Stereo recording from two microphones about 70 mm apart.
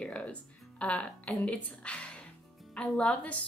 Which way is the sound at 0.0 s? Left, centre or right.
Centre.